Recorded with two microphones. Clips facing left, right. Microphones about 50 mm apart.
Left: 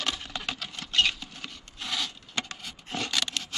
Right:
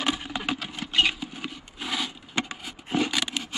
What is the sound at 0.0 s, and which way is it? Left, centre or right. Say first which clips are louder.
Rub: right 5 dB; centre.